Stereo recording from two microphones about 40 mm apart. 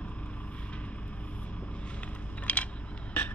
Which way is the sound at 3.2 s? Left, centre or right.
Left.